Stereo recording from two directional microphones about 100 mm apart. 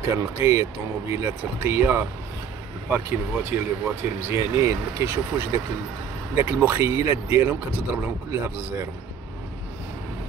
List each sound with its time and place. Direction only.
0.1 s speech: 30° right (ahead or behind)